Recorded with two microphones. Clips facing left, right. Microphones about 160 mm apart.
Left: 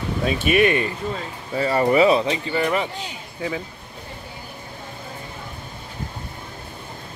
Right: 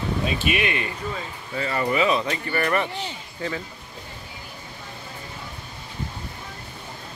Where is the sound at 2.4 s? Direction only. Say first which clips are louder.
Left 2 dB; 15° left (ahead or behind).